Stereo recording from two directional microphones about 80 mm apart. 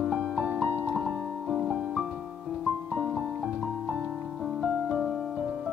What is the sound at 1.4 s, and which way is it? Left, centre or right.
Music, centre.